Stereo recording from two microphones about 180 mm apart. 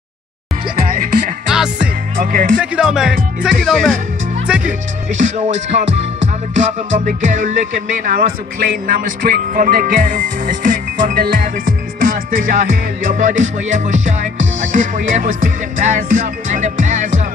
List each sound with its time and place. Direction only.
1.5 s music: 5° right (ahead or behind)
2.1 s music: 50° right (ahead or behind)
2.6 s speech: 5° right (ahead or behind)
5.1 s music: 40° right (ahead or behind)